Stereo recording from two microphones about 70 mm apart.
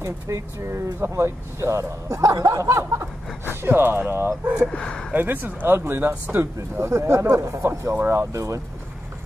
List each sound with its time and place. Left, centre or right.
0.0 s speech: right
4.6 s speech: centre
5.1 s speech: right
7.9 s speech: right